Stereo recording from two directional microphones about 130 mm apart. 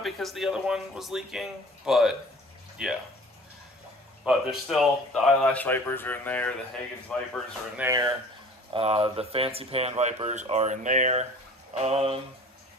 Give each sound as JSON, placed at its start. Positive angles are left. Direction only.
{"t": 0.0, "sound": "speech", "side_deg": 0}
{"t": 4.2, "sound": "speech", "side_deg": -5}
{"t": 7.9, "sound": "speech", "side_deg": -30}
{"t": 8.7, "sound": "speech", "side_deg": -50}
{"t": 11.7, "sound": "speech", "side_deg": -50}